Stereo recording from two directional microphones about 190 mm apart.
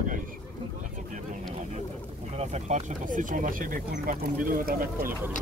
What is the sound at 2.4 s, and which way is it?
Speech, 35° right (ahead or behind).